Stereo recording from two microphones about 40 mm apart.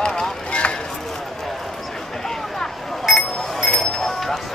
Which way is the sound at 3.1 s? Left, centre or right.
Centre.